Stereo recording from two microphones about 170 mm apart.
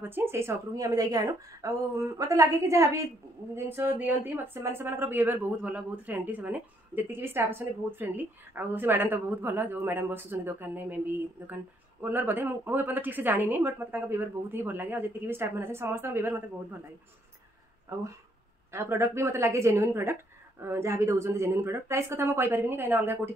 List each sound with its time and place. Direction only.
0.0 s a woman's voice: 15° right (ahead or behind)
18.7 s a woman's voice: 15° right (ahead or behind)